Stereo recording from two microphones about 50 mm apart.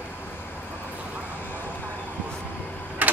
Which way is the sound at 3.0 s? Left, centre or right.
Right.